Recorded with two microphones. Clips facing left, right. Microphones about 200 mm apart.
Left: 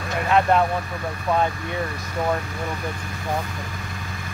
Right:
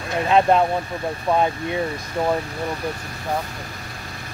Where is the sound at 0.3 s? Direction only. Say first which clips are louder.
Right 2 dB; 20° right (ahead or behind).